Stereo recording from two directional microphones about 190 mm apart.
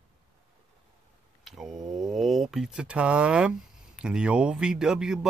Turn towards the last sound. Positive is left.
turn(degrees=-5)  # may be behind; listen again after turning